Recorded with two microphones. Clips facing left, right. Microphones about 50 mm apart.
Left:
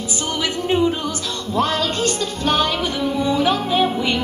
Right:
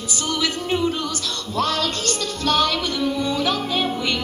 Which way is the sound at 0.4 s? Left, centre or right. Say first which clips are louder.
Left 4 dB; left.